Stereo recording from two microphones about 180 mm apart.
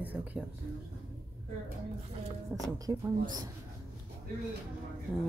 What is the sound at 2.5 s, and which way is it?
Speech, 20° right (ahead or behind).